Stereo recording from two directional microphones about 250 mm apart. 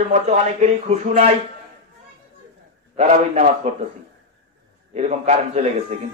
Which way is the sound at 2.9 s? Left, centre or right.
Right.